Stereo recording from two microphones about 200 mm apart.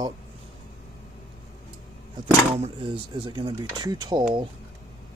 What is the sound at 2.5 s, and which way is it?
Speech, 30° right (ahead or behind).